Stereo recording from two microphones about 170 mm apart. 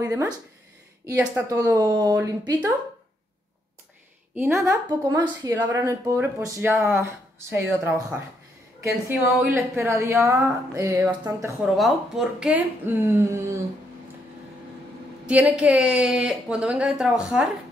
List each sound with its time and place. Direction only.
0.0 s speech: 15° right (ahead or behind)
1.5 s speech: 20° right (ahead or behind)
4.4 s speech: 15° right (ahead or behind)
8.8 s speech: 10° right (ahead or behind)
11.6 s speech: centre (ahead or behind)
15.2 s a woman's voice: 10° right (ahead or behind)